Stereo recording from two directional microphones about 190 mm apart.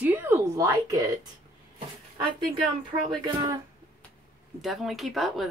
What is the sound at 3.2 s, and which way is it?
Speech, 25° right (ahead or behind).